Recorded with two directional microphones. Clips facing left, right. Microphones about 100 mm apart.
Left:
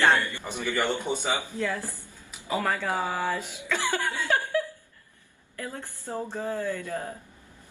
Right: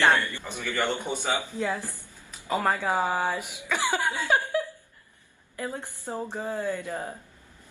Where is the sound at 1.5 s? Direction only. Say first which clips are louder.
Right 1 dB; 20° right (ahead or behind).